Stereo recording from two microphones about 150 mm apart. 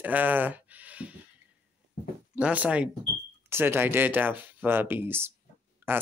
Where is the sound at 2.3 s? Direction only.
10° right (ahead or behind).